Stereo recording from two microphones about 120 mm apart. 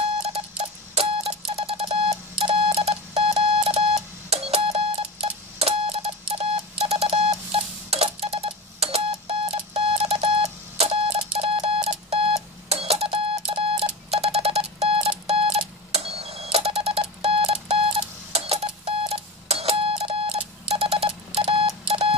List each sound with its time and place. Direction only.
0.2 s alarm clock: 55° right (ahead or behind)